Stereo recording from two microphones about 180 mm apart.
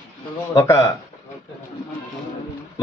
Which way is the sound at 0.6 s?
15° left (ahead or behind).